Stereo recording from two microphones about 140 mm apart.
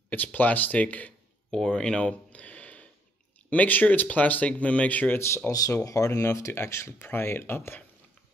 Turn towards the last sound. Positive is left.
turn(degrees=15)  # may be behind; listen again after turning